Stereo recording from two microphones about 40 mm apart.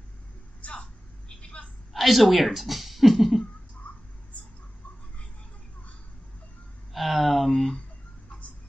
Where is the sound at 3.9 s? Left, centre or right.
Left.